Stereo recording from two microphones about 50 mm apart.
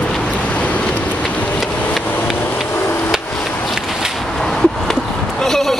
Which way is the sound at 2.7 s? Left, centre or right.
Left.